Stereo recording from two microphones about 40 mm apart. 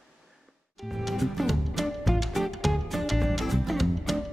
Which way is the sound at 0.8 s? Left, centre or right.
Centre.